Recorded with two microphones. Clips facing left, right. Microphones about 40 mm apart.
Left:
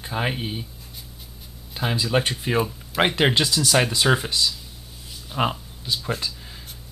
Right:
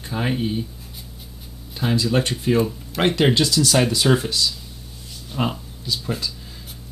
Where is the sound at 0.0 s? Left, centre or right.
Centre.